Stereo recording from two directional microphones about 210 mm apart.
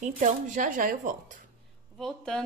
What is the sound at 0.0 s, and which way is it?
Speech, 35° right (ahead or behind).